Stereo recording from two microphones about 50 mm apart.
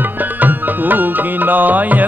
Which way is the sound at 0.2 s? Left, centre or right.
Right.